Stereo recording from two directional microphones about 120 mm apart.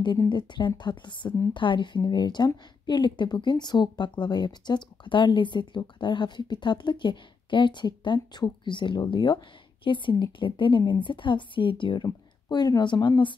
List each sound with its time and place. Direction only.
0.3 s a woman's voice: 40° left (ahead or behind)